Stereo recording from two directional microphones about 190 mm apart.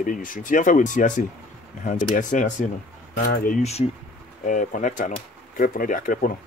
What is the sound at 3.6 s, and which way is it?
Speech, 35° left (ahead or behind).